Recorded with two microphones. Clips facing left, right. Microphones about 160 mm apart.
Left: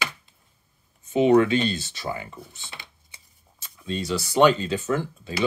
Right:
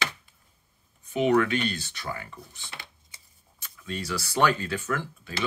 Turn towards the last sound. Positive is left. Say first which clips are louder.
# left 5 dB
turn(degrees=25)  # may be behind; listen again after turning